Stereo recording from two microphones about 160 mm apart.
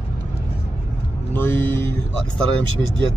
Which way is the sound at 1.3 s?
15° left (ahead or behind).